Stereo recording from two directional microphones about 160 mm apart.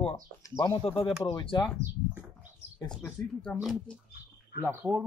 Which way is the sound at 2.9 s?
10° left (ahead or behind).